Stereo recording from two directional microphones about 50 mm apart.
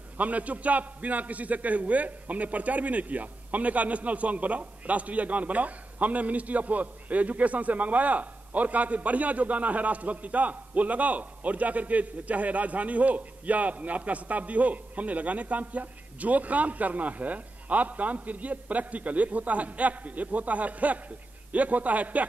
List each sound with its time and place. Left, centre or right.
0.2 s a man's voice: right